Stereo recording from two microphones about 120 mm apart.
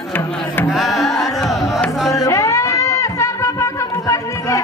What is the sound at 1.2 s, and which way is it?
Carnatic music, centre (ahead or behind).